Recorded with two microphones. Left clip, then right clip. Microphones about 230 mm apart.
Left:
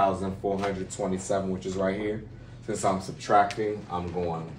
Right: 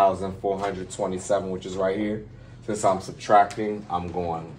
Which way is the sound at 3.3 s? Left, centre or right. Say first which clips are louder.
Right 4 dB; right.